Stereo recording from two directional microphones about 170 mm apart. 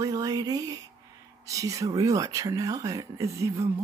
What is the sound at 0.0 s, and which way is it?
Speech, 20° right (ahead or behind).